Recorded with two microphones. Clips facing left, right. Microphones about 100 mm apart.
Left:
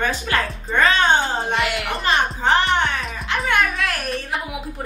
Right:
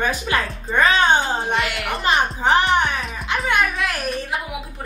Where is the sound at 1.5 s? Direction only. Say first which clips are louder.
Left 1 dB; centre (ahead or behind).